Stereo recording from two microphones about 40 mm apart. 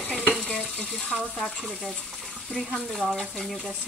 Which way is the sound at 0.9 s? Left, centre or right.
Centre.